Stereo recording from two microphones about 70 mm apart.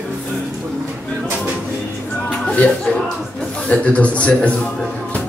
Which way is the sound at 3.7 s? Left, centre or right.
Centre.